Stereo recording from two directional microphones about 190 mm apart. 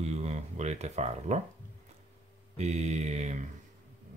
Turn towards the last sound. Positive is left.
turn(degrees=-35)  # may be behind; listen again after turning